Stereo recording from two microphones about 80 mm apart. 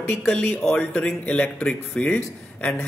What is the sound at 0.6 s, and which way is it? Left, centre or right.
A man's voice, centre.